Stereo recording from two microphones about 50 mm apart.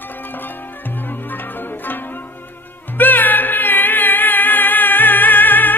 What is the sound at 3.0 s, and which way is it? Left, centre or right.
Music, left.